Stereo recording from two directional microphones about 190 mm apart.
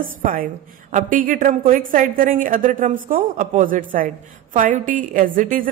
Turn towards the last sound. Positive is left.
turn(degrees=-45)  # may be behind; listen again after turning